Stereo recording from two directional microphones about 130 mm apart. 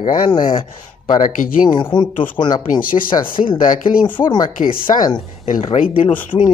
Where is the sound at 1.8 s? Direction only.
35° left (ahead or behind).